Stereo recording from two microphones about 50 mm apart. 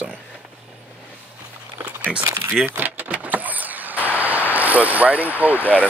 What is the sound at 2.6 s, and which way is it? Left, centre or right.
Vehicle, right.